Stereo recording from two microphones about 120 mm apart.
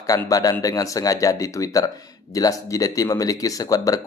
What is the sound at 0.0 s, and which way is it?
A man's voice, 30° left (ahead or behind).